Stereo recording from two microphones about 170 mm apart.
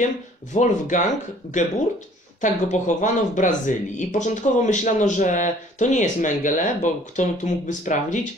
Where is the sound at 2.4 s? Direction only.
45° left (ahead or behind).